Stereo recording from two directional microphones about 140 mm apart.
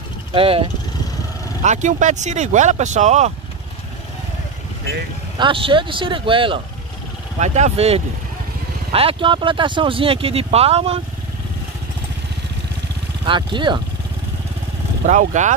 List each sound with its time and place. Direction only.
0.3 s speech: 40° right (ahead or behind)
1.6 s speech: 60° right (ahead or behind)
5.4 s speech: 35° right (ahead or behind)
7.3 s speech: 55° right (ahead or behind)
13.2 s speech: 35° right (ahead or behind)
15.0 s speech: 60° right (ahead or behind)